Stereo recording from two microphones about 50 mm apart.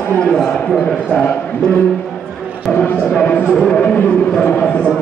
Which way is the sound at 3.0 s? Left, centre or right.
Left.